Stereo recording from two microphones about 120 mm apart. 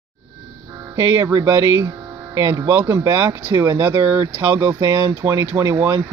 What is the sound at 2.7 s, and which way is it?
Speech, 15° right (ahead or behind).